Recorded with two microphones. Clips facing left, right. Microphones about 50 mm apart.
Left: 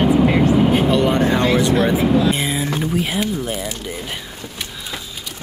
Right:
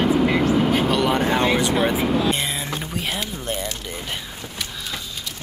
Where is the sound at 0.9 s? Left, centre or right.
Centre.